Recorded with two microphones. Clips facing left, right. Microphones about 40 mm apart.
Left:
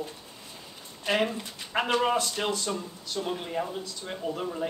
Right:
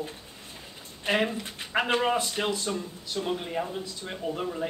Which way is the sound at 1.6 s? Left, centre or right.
Right.